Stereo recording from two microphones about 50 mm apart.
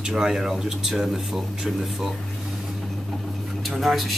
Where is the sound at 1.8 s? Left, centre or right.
Centre.